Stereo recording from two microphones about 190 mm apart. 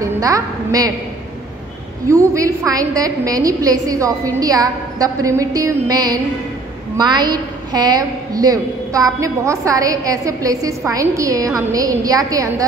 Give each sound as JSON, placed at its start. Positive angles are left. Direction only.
{"t": 0.0, "sound": "a woman's voice", "side_deg": -15}
{"t": 2.0, "sound": "a woman's voice", "side_deg": -15}